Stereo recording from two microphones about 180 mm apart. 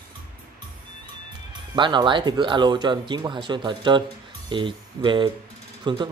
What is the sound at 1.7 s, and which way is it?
Speech, 25° right (ahead or behind).